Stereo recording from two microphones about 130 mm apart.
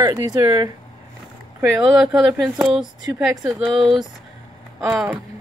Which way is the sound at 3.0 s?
30° right (ahead or behind).